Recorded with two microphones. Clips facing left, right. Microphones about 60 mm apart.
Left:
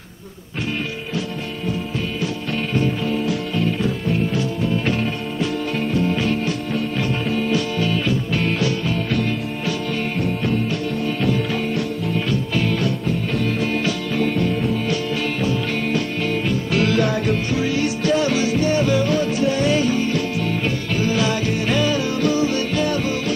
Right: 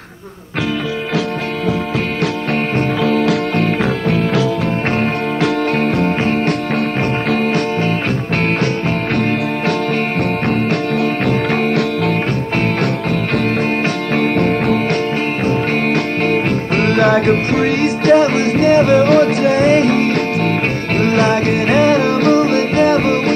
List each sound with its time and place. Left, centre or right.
3.1 s music: right
11.2 s music: right
14.1 s music: right